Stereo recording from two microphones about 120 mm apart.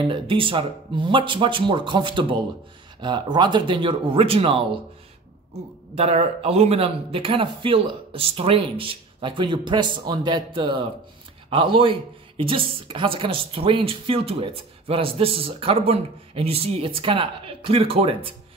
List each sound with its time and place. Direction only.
0.1 s speech: 45° right (ahead or behind)
5.9 s speech: 60° right (ahead or behind)